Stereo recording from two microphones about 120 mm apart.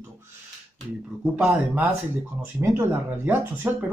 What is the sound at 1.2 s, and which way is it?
Speech, 10° right (ahead or behind).